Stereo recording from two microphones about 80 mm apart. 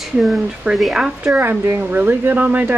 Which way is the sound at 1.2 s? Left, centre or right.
Right.